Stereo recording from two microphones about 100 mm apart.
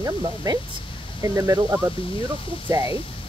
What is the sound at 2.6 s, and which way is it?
Speech, 40° right (ahead or behind).